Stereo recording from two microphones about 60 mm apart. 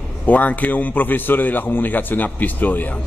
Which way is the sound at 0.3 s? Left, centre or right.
Left.